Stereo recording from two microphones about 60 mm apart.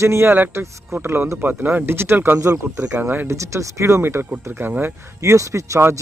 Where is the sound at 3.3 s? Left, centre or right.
Right.